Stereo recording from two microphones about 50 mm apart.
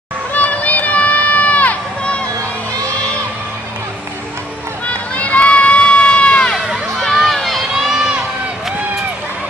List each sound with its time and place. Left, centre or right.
0.3 s crowd: left
4.8 s crowd: left
7.0 s crowd: centre